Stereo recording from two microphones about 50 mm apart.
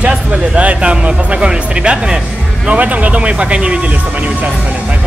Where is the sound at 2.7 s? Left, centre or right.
Right.